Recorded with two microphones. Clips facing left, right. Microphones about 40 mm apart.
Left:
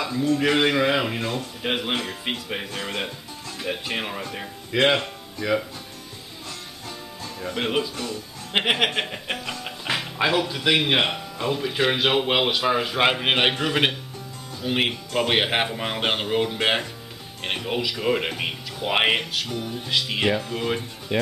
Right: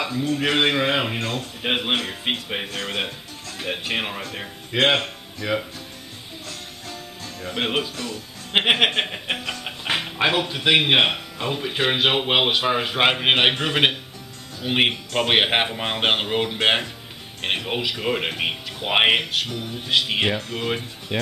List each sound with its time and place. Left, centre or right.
0.2 s a man's voice: centre
7.5 s a man's voice: right
20.3 s speech: centre
20.6 s a man's voice: centre